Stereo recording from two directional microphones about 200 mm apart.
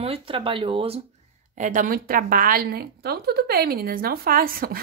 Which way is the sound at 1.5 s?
40° right (ahead or behind).